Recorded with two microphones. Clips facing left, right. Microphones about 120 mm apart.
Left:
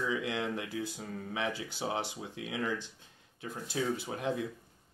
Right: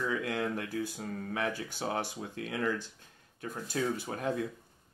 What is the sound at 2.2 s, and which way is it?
Speech, 15° left (ahead or behind).